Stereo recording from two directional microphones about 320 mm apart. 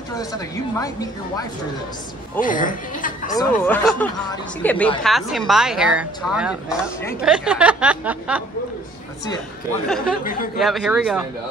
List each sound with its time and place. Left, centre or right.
0.2 s speech: centre
2.4 s speech: left
3.3 s a woman's voice: centre
10.2 s speech: left
10.6 s a woman's voice: centre